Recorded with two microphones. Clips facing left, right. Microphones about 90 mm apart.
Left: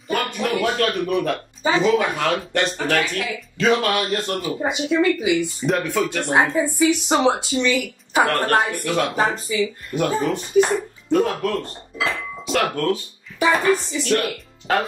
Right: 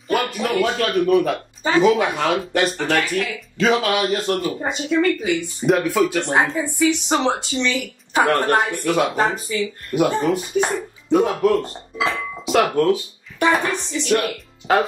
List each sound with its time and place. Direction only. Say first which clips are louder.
0.1 s a sound: right 2 dB; centre (ahead or behind)
0.7 s speech: right 4 dB; centre (ahead or behind)
6.2 s speech: left 1 dB; 10° left (ahead or behind); by 13.0 s 15° right (ahead or behind)
13.4 s speech: left 1 dB; centre (ahead or behind)